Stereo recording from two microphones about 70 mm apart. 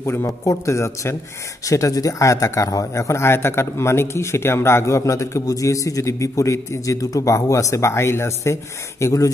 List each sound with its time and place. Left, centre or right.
0.0 s a man's voice: left
1.7 s a man's voice: left
9.0 s a man's voice: left